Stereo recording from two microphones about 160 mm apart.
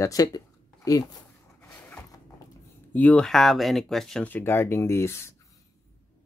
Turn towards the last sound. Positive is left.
turn(degrees=15)  # may be behind; listen again after turning